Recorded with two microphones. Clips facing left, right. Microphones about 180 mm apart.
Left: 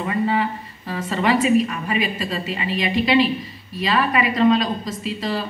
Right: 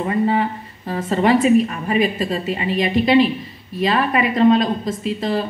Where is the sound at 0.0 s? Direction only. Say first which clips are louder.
Right 3 dB; 40° right (ahead or behind).